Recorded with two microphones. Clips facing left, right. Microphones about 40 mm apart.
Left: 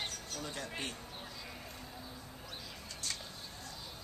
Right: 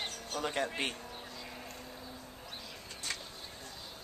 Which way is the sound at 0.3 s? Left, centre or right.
Right.